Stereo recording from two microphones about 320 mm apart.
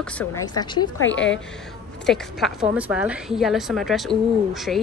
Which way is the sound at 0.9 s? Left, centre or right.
Left.